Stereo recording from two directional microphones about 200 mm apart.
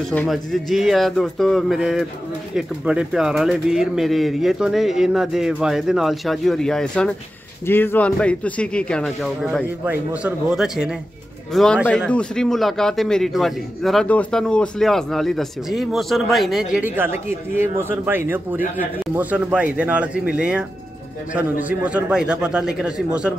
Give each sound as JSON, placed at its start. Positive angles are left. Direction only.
{"t": 0.1, "sound": "a man's voice", "side_deg": 5}